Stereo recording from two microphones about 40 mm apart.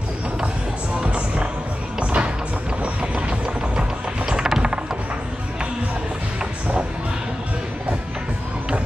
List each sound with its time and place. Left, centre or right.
1.0 s music: right
2.8 s train: right
4.3 s a sound: centre